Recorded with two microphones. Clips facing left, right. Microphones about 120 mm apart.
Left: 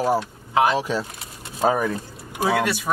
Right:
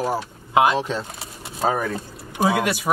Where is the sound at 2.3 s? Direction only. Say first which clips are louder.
Right 1 dB; 15° right (ahead or behind).